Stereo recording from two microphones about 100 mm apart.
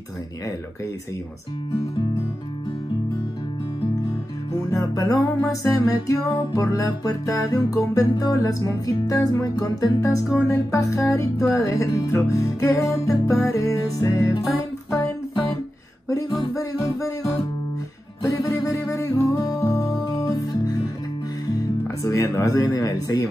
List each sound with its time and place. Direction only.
4.5 s music: 35° left (ahead or behind)
16.1 s music: 35° left (ahead or behind)
18.2 s music: 35° left (ahead or behind)
21.8 s music: 30° left (ahead or behind)